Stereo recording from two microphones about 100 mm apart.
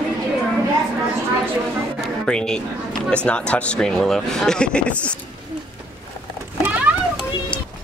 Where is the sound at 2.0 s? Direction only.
5° left (ahead or behind).